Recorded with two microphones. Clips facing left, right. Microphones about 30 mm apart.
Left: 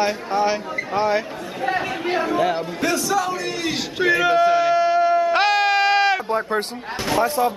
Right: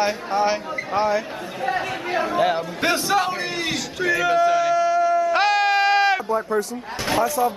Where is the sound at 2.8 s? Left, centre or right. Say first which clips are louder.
Right 1 dB; right.